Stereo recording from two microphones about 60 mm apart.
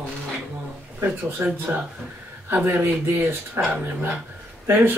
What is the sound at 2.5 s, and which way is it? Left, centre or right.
Speech, right.